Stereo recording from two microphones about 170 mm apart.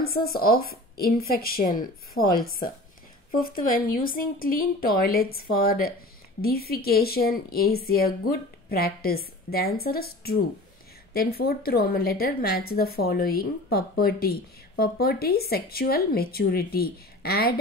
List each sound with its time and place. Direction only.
0.0 s a woman's voice: 60° left (ahead or behind)
3.3 s a woman's voice: 60° left (ahead or behind)